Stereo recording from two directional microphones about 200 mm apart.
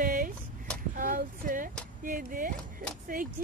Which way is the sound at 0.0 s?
45° right (ahead or behind).